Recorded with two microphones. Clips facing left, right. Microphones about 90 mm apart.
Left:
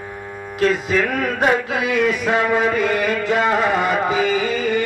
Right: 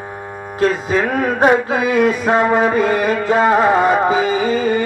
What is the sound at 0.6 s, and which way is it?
Music, 25° right (ahead or behind).